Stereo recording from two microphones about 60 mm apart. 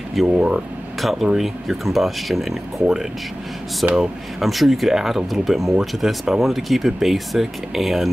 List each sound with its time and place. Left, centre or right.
0.3 s speech: centre
1.0 s speech: centre
3.8 s speech: centre
4.4 s speech: centre